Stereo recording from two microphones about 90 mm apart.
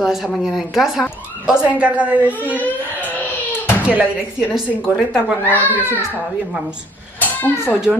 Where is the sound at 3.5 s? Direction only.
25° left (ahead or behind).